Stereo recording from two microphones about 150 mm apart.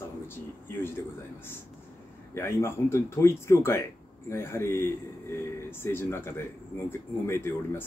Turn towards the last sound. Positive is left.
turn(degrees=15)  # may be behind; listen again after turning